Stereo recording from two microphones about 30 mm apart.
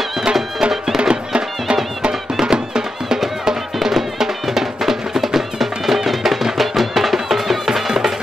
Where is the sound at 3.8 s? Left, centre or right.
Centre.